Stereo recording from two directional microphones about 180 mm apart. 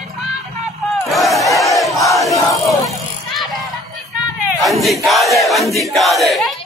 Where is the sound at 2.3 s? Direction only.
15° left (ahead or behind).